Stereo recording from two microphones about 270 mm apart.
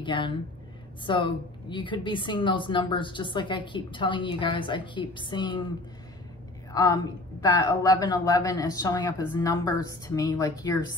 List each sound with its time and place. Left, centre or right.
0.0 s a woman's voice: centre
6.7 s a woman's voice: centre